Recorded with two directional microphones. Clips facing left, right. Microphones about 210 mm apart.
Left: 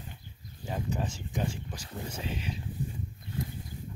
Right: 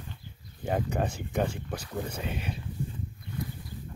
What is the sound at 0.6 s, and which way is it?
Speech, 60° right (ahead or behind).